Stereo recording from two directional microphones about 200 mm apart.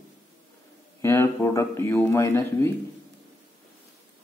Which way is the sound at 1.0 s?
10° left (ahead or behind).